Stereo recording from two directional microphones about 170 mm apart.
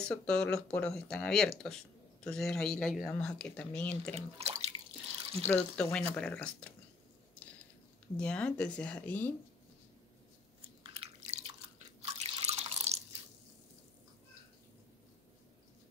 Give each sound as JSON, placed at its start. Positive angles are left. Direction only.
{"t": 0.0, "sound": "speech", "side_deg": 5}
{"t": 4.4, "sound": "bathtub", "side_deg": -35}
{"t": 5.5, "sound": "speech", "side_deg": 10}
{"t": 8.2, "sound": "speech", "side_deg": 5}
{"t": 10.8, "sound": "chewing", "side_deg": -35}
{"t": 12.0, "sound": "drip", "side_deg": -40}